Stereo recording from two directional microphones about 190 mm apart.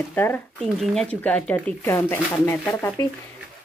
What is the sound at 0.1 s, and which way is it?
Speech, 10° left (ahead or behind).